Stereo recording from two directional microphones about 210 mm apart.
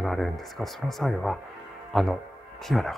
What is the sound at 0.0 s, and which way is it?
Speech, centre (ahead or behind).